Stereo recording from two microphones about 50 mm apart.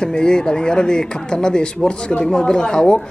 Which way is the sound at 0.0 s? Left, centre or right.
Centre.